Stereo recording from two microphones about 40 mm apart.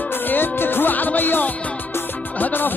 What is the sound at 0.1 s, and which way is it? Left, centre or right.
Music, left.